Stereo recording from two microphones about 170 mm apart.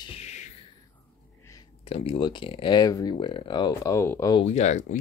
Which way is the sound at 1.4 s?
20° left (ahead or behind).